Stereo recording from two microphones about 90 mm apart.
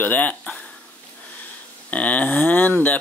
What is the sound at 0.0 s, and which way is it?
Speech, 20° left (ahead or behind).